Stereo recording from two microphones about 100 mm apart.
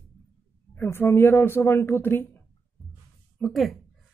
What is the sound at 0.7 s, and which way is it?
A man's voice, 25° left (ahead or behind).